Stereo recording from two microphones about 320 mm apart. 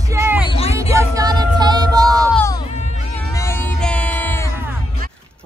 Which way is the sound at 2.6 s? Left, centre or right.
Left.